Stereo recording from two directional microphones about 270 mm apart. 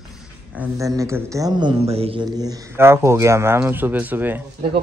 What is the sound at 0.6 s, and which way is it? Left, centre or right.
Speech, centre.